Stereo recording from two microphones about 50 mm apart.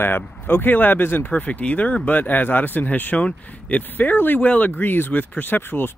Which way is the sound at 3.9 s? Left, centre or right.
Left.